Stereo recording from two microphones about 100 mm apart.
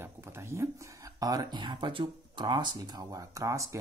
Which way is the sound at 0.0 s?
25° right (ahead or behind).